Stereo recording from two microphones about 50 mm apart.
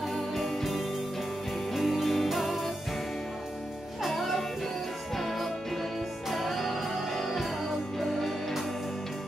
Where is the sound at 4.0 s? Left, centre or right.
Centre.